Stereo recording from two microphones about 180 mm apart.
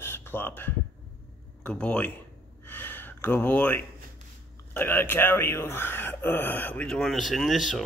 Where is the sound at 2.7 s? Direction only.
10° left (ahead or behind).